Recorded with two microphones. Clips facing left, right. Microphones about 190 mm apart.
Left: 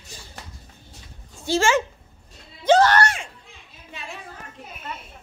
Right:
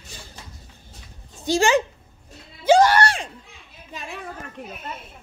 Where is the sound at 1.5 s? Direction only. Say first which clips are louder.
Right 2 dB; 15° right (ahead or behind).